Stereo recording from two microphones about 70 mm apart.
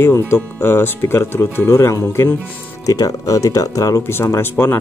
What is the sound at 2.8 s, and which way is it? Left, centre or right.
Speech, left.